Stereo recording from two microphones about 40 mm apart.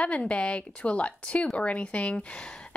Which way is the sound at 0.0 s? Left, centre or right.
Left.